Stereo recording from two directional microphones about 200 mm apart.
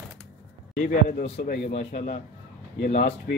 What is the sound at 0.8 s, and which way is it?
Speech, 40° left (ahead or behind).